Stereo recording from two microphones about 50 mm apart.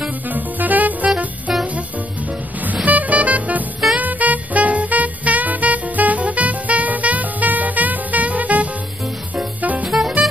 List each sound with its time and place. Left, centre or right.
0.3 s music: right
2.6 s music: right
9.8 s music: centre